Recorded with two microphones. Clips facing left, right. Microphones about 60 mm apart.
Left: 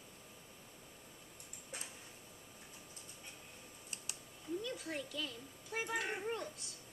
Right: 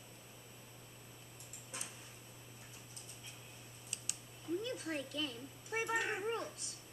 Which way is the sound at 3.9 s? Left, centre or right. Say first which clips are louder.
Left 1 dB; left.